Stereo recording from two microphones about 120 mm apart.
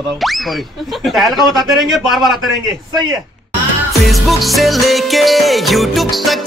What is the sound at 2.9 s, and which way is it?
Speech, 35° right (ahead or behind).